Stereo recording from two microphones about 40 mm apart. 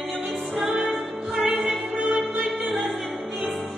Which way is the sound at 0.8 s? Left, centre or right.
Centre.